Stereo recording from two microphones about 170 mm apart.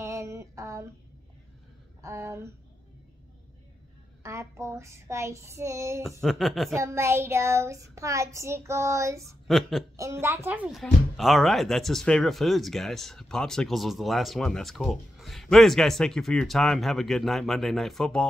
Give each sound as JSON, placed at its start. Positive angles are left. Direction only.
{"t": 0.0, "sound": "a sound", "side_deg": -15}
{"t": 2.0, "sound": "speech", "side_deg": -15}
{"t": 4.2, "sound": "child singing", "side_deg": -15}
{"t": 6.0, "sound": "speech", "side_deg": 0}
{"t": 6.7, "sound": "child singing", "side_deg": -15}
{"t": 9.5, "sound": "speech", "side_deg": 0}
{"t": 9.9, "sound": "child singing", "side_deg": -15}
{"t": 10.8, "sound": "speech", "side_deg": 0}